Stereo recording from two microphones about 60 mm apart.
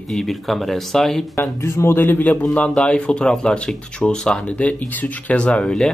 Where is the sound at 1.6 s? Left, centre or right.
Left.